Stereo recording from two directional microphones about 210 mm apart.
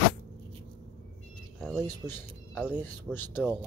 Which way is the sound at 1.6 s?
Centre (ahead or behind).